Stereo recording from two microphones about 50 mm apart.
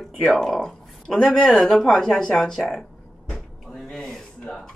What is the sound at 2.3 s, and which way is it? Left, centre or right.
Speech, centre.